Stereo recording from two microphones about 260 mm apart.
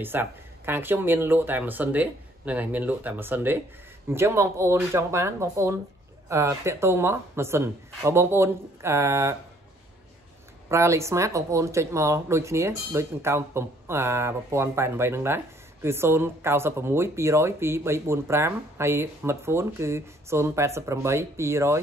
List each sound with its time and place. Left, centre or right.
0.0 s speech: centre
10.7 s speech: centre